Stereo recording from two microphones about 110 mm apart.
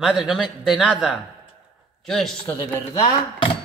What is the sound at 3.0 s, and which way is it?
Speech, 55° left (ahead or behind).